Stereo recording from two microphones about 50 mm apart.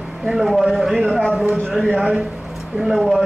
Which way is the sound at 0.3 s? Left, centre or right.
Centre.